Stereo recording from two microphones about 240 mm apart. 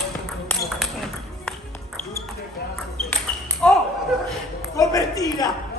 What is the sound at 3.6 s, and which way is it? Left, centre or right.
Basketball bounce, centre.